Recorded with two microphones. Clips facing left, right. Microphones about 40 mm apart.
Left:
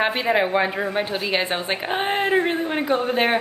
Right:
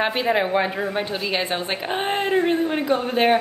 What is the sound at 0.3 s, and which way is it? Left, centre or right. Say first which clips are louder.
A woman's voice: left 1 dB; centre.